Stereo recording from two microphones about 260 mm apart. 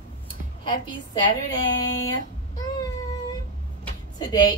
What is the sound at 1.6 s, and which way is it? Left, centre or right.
Speech, centre.